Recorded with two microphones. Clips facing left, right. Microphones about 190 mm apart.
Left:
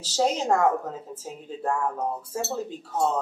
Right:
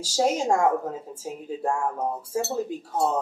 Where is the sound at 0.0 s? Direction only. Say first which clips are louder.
Right 1 dB; 10° right (ahead or behind).